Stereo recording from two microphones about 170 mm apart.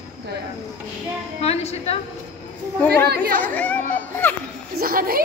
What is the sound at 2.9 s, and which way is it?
Speech, 70° right (ahead or behind).